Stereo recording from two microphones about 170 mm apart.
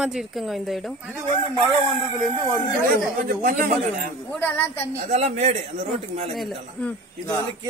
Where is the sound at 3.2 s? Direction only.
55° right (ahead or behind).